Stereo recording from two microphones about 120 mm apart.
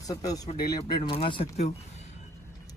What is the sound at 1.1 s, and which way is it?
Speech, 55° left (ahead or behind).